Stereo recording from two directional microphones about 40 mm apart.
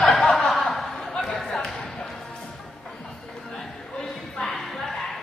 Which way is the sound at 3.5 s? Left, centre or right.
Centre.